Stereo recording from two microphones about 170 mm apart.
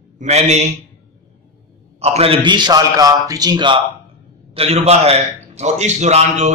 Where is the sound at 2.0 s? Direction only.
35° right (ahead or behind).